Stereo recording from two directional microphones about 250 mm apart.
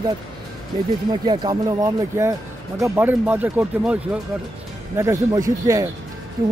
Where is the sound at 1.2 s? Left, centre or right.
Centre.